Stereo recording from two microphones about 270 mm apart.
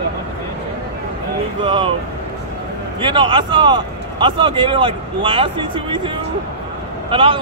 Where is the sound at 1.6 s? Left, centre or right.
Centre.